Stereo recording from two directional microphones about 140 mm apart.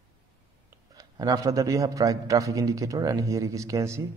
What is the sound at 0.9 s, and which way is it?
A man's voice, 25° right (ahead or behind).